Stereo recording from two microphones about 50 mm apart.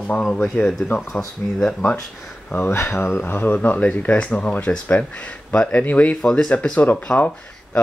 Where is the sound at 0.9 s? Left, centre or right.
Left.